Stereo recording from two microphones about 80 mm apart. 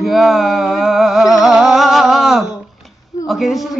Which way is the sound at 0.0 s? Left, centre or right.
Centre.